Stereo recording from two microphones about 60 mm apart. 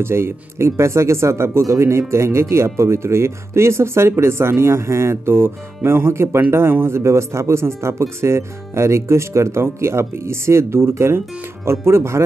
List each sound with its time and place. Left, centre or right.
0.0 s speech: right